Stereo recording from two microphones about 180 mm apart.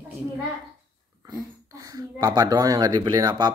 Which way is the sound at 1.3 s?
20° right (ahead or behind).